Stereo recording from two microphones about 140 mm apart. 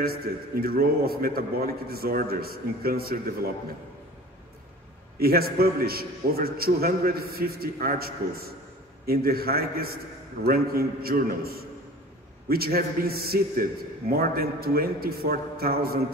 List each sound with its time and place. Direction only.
0.0 s a man's voice: 90° right
5.2 s a man's voice: 90° right